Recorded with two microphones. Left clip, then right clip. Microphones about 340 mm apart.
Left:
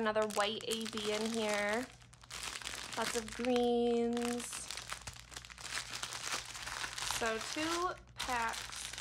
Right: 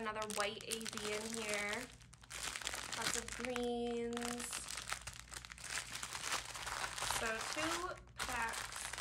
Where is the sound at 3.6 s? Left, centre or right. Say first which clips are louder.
Left 8 dB; left.